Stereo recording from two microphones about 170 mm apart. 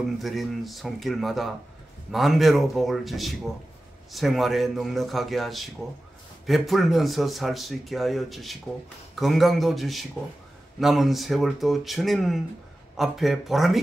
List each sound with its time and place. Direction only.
0.2 s speech: centre (ahead or behind)